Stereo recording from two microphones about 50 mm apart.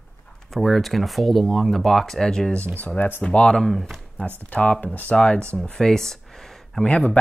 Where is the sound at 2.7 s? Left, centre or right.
Left.